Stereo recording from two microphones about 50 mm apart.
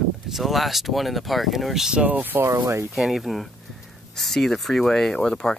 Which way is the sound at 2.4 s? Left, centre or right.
Right.